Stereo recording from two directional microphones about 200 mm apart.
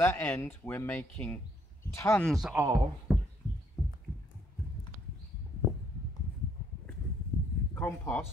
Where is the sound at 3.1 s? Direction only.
5° right (ahead or behind).